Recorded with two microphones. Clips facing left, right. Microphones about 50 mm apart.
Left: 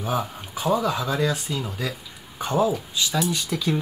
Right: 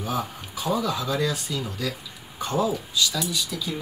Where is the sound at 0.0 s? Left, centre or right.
Left.